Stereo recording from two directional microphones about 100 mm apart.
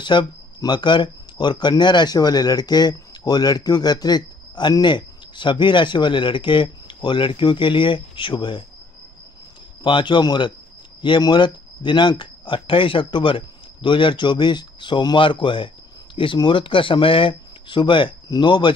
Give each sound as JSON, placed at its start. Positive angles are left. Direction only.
{"t": 0.0, "sound": "speech", "side_deg": 50}
{"t": 9.8, "sound": "speech", "side_deg": 55}